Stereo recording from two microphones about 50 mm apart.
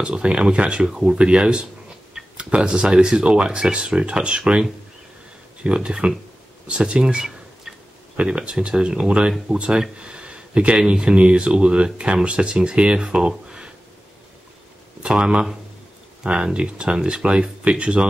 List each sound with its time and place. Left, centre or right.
0.0 s speech: right
15.0 s speech: centre